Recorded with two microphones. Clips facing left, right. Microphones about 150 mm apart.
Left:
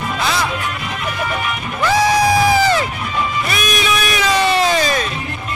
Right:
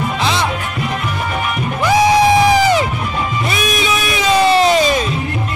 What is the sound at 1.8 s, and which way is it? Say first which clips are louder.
Crowd: right 3 dB; 15° right (ahead or behind).